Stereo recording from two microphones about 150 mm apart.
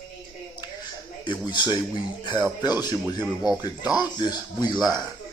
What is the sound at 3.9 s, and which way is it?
Speech, 30° left (ahead or behind).